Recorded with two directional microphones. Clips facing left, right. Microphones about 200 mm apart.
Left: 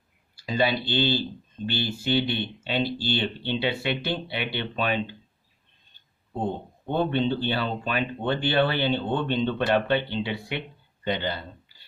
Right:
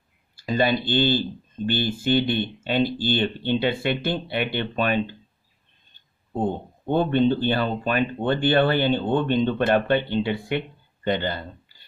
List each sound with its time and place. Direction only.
0.4 s speech: 50° right (ahead or behind)
6.9 s speech: 50° right (ahead or behind)